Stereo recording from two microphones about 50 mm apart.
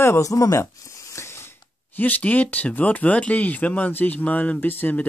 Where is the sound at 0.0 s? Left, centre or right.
Left.